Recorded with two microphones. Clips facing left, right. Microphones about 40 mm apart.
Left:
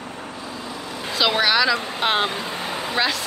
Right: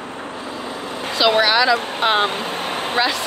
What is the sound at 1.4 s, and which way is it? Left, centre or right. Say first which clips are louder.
Speech: right 2 dB; centre.